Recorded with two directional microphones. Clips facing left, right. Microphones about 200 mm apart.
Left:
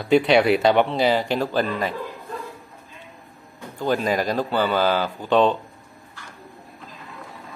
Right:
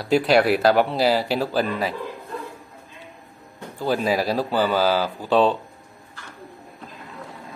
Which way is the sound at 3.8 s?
5° right (ahead or behind).